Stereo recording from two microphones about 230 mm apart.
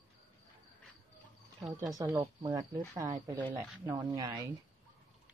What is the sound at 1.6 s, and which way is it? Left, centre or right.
Speech, centre.